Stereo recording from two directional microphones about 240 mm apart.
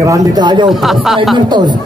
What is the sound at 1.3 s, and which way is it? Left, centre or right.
Speech, centre.